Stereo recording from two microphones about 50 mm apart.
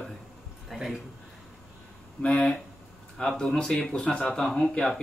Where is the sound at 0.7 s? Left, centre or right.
Centre.